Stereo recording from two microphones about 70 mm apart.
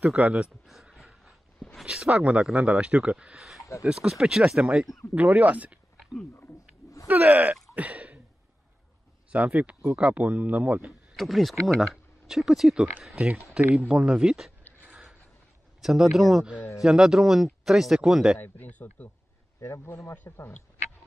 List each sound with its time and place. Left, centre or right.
0.0 s speech: centre
1.9 s speech: centre
5.1 s speech: right
7.1 s speech: right
7.7 s throat clearing: centre
9.3 s speech: right
10.9 s speech: centre
15.8 s speech: centre
18.4 s speech: left
19.6 s speech: left